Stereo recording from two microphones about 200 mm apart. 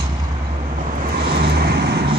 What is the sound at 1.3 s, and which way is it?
Vehicle, 55° right (ahead or behind).